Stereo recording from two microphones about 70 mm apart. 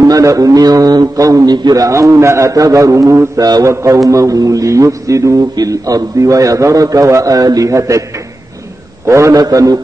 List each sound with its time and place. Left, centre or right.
0.0 s speech: right
3.3 s mantra: right
3.6 s a man's voice: right
4.1 s a man's voice: right
9.0 s a man's voice: right
9.4 s speech: right